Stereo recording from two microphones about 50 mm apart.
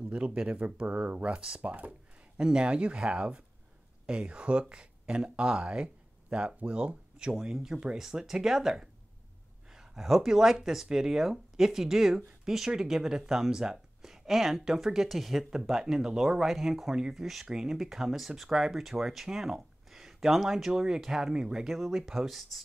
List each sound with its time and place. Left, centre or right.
0.1 s speech: right
1.6 s a sound: right
2.4 s speech: centre
21.6 s speech: centre